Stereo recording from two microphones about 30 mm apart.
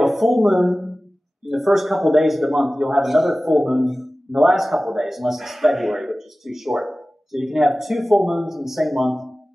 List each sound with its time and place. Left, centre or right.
0.0 s a man's voice: centre
4.3 s speech: right
4.6 s a man's voice: centre